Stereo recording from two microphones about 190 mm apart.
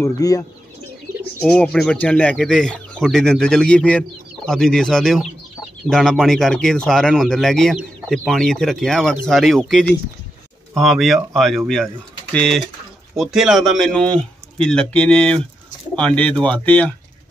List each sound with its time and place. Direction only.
0.0 s speech: 20° left (ahead or behind)
1.4 s speech: 5° left (ahead or behind)